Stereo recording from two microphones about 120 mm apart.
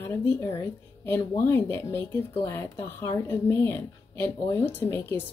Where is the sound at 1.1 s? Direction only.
20° left (ahead or behind).